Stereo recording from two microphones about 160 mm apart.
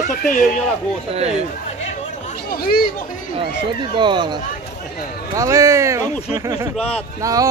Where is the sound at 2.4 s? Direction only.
70° left (ahead or behind).